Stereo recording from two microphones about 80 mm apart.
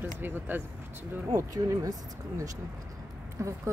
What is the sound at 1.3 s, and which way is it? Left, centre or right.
Speech, right.